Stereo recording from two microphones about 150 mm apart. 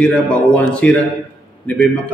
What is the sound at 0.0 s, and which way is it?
A man's voice, 10° left (ahead or behind).